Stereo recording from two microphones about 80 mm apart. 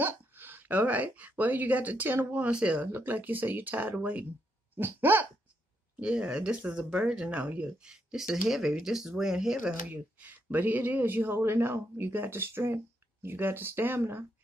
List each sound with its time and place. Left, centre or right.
0.0 s speech: right
5.9 s speech: centre
9.6 s speech: centre